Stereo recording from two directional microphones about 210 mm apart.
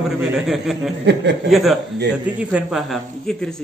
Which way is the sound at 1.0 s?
55° right (ahead or behind).